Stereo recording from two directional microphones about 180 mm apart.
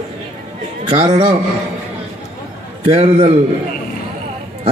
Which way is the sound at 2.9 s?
35° right (ahead or behind).